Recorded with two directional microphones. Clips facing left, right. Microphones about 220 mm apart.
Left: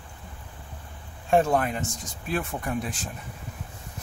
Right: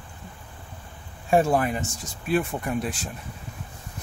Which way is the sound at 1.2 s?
5° right (ahead or behind).